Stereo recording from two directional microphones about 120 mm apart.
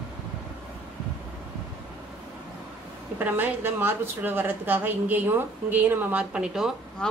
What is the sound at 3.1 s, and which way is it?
A woman's voice, 15° right (ahead or behind).